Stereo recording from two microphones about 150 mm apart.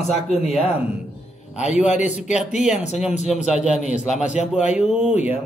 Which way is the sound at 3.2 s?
50° left (ahead or behind).